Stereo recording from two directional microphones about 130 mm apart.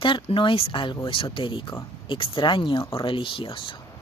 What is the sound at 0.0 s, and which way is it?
Speech, 40° left (ahead or behind).